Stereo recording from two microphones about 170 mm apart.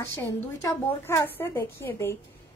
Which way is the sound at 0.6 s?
15° left (ahead or behind).